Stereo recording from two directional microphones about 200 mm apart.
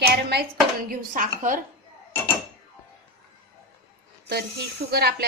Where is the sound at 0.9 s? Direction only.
40° right (ahead or behind).